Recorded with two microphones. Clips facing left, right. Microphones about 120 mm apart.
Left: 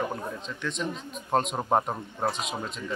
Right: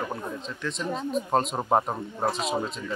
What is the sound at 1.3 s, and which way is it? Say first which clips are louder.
Speech: even; centre (ahead or behind).